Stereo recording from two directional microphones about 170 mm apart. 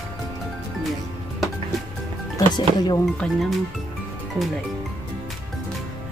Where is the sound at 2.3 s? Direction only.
25° left (ahead or behind).